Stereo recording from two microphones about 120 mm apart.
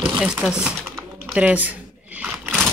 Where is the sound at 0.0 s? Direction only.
5° right (ahead or behind).